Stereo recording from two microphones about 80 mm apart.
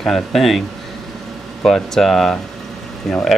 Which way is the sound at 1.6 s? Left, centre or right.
Centre.